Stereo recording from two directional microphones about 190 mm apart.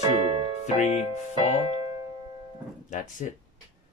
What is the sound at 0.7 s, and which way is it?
Music, 35° left (ahead or behind).